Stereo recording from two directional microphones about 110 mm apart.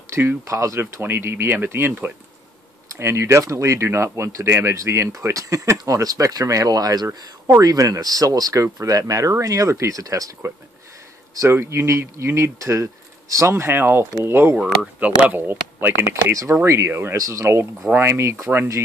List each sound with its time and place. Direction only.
0.1 s speech: 25° right (ahead or behind)